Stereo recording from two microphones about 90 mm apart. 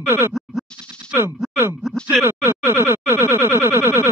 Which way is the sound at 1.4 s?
Centre (ahead or behind).